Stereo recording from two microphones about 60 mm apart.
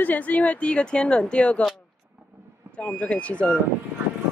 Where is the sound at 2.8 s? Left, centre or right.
Centre.